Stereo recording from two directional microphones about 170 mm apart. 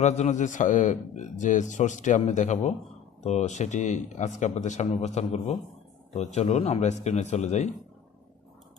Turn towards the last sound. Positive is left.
turn(degrees=40)  # may be behind; listen again after turning